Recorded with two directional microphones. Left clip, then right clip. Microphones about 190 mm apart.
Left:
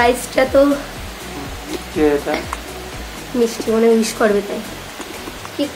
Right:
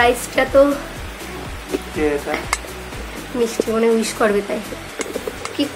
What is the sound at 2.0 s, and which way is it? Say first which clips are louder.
Speech: left 5 dB; 15° left (ahead or behind).